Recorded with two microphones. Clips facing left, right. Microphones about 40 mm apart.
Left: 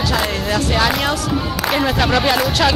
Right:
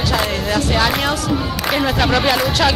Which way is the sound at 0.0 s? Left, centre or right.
Centre.